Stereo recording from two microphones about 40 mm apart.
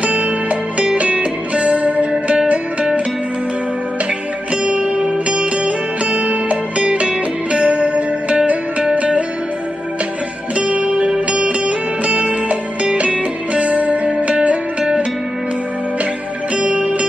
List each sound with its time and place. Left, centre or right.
0.0 s music: right
4.6 s music: right
10.5 s music: right
16.5 s music: right